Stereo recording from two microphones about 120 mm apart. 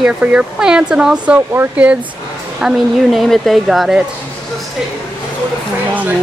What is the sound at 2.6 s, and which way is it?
A woman's voice, centre (ahead or behind).